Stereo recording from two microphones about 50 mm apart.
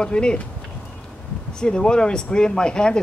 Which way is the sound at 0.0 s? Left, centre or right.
Centre.